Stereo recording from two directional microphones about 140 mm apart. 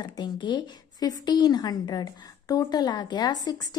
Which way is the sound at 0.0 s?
30° left (ahead or behind).